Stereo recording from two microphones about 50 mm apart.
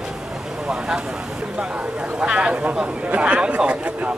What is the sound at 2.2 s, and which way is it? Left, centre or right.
A man's voice, centre.